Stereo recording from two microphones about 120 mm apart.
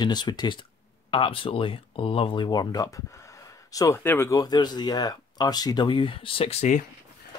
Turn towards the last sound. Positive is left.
turn(degrees=75)  # may be behind; listen again after turning